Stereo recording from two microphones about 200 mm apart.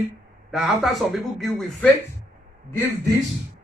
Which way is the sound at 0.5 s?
Centre (ahead or behind).